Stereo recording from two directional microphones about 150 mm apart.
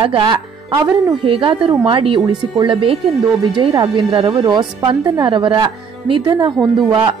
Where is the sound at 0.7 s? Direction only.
20° right (ahead or behind).